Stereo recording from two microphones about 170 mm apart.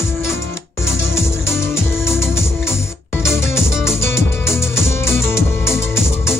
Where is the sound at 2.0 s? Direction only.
15° left (ahead or behind).